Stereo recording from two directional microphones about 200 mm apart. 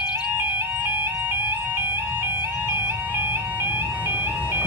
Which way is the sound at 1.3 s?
10° right (ahead or behind).